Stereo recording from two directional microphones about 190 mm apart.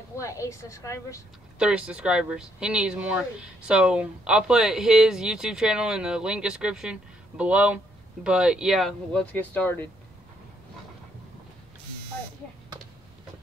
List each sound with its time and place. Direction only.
0.2 s a woman's voice: 15° left (ahead or behind)
1.6 s speech: 5° right (ahead or behind)